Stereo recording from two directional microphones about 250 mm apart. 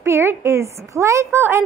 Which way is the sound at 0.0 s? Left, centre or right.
Centre.